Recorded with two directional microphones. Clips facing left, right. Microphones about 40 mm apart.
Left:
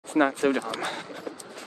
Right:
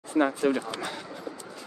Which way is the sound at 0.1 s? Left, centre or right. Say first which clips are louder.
Left 1 dB; left.